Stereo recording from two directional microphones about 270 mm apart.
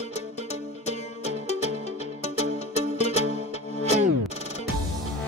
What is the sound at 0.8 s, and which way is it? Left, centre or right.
Music, left.